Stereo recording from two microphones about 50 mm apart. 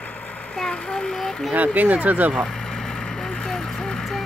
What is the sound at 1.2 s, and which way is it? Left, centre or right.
Speech, centre.